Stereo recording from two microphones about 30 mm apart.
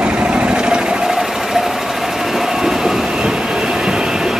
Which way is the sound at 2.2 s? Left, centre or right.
Centre.